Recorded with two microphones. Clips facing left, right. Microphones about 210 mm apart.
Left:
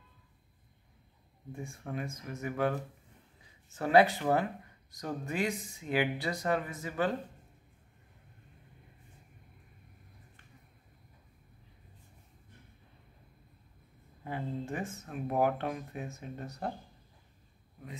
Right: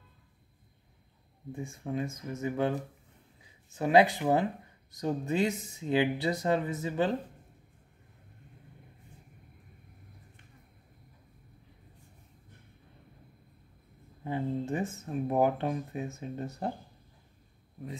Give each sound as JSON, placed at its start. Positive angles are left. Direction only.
{"t": 1.5, "sound": "speech", "side_deg": -20}
{"t": 14.2, "sound": "speech", "side_deg": -25}